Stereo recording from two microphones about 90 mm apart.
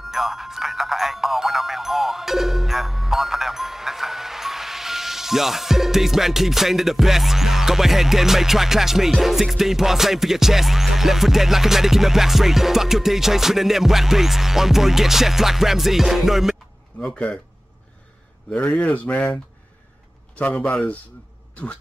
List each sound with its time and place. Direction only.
0.0 s speech: 5° right (ahead or behind)
17.0 s speech: 10° left (ahead or behind)
18.5 s speech: 15° left (ahead or behind)
20.3 s speech: 15° left (ahead or behind)